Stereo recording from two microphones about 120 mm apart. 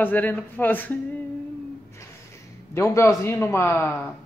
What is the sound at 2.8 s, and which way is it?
A man's voice, 25° left (ahead or behind).